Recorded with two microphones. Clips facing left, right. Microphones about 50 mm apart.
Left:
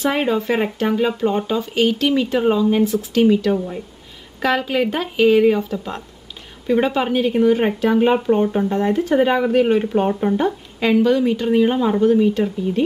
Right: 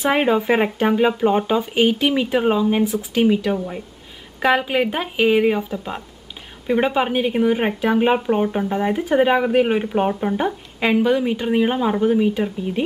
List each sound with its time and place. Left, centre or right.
0.0 s speech: centre